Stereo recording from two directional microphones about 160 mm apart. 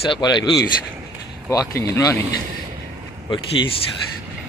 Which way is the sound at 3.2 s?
30° left (ahead or behind).